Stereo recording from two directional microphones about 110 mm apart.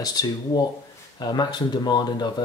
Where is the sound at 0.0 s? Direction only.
35° left (ahead or behind).